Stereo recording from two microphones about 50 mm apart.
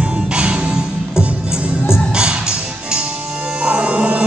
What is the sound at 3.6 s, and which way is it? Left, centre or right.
Music, right.